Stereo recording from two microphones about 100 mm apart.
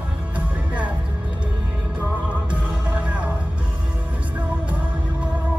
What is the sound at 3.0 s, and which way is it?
Music, 15° right (ahead or behind).